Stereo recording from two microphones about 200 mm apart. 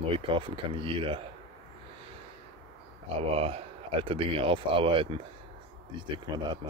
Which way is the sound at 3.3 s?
30° right (ahead or behind).